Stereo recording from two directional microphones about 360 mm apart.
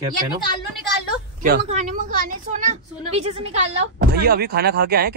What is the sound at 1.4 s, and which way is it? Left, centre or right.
A woman's voice, right.